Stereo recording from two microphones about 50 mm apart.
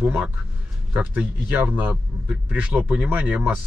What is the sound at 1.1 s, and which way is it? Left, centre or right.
Speech, right.